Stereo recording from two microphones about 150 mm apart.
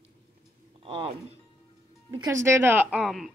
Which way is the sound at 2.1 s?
25° right (ahead or behind).